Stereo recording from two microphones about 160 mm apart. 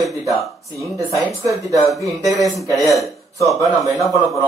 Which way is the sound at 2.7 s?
Centre (ahead or behind).